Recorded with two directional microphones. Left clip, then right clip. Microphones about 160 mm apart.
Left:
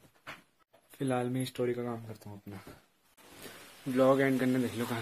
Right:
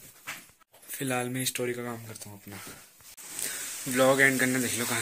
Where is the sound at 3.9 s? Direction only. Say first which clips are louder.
Right 4 dB; centre (ahead or behind).